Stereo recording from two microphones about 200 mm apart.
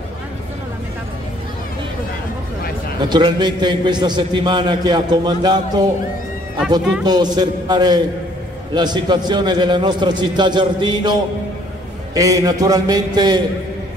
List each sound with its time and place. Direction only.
3.1 s a man's voice: 20° right (ahead or behind)
7.1 s a man's voice: 20° right (ahead or behind)